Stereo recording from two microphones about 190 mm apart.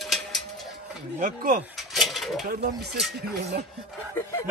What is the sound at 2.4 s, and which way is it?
Speech, 60° right (ahead or behind).